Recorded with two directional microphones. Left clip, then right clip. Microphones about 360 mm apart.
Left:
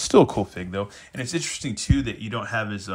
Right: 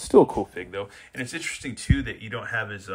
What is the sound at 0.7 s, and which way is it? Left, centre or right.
Speech, centre.